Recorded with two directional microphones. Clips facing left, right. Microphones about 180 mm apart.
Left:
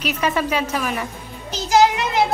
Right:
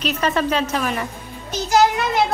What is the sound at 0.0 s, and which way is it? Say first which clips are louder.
Speech: right 1 dB; 10° left (ahead or behind).